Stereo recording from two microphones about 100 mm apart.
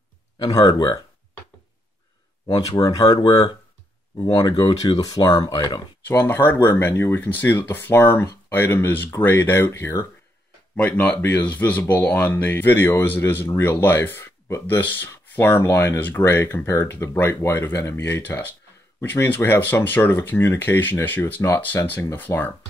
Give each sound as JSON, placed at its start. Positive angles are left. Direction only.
{"t": 0.4, "sound": "speech", "side_deg": 40}
{"t": 2.4, "sound": "speech", "side_deg": 40}
{"t": 6.2, "sound": "speech", "side_deg": 20}
{"t": 10.8, "sound": "speech", "side_deg": 15}